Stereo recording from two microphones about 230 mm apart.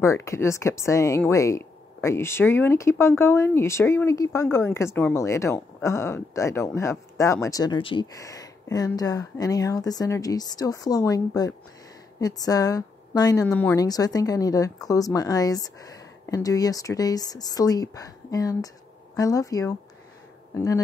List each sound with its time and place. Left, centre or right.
0.0 s a woman's voice: centre